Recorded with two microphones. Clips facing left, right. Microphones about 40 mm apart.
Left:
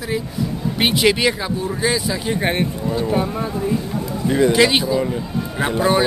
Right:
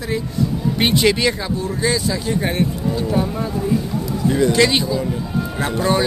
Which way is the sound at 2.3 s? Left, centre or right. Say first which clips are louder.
Left 1 dB; left.